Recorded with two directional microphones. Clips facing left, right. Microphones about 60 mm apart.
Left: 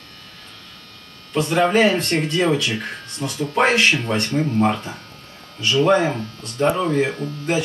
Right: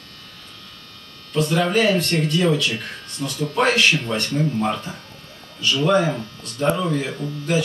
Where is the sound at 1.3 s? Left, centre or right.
Left.